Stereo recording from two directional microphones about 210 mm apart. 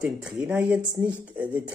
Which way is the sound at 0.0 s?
5° right (ahead or behind).